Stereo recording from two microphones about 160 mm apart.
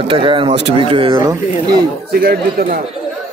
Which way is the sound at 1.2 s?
20° right (ahead or behind).